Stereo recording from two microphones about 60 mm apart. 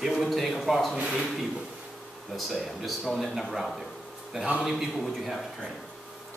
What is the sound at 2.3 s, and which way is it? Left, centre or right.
A man's voice, centre.